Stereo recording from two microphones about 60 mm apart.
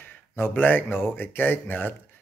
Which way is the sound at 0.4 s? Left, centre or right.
Left.